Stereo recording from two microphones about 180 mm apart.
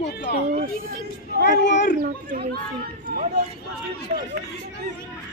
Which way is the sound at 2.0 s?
55° right (ahead or behind).